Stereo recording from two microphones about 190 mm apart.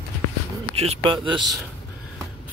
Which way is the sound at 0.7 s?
30° right (ahead or behind).